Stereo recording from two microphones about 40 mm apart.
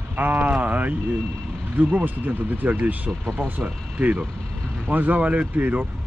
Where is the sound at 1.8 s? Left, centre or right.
Right.